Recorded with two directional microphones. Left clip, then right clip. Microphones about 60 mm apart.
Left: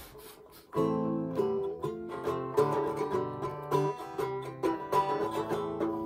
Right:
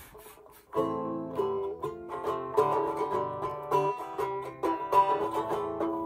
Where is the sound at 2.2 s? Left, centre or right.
Right.